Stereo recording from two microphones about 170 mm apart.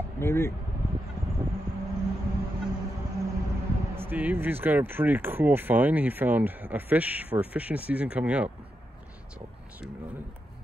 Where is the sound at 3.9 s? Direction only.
10° right (ahead or behind).